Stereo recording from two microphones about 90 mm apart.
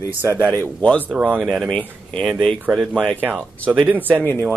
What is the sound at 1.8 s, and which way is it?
Speech, 10° left (ahead or behind).